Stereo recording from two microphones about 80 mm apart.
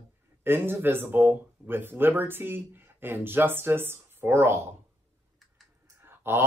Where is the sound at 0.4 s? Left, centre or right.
Right.